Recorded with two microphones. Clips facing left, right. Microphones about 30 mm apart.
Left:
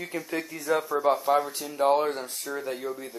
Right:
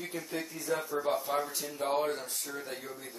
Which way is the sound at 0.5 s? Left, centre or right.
Left.